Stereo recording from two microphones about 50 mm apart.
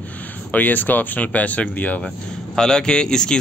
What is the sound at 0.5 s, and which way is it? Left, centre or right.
Speech, left.